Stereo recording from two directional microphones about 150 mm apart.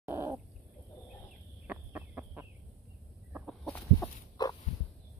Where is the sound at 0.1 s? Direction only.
20° right (ahead or behind).